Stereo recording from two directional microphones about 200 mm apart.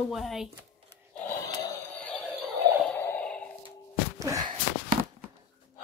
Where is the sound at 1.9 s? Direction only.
5° left (ahead or behind).